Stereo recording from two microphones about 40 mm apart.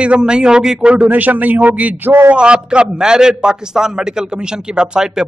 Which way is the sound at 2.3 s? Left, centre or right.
Right.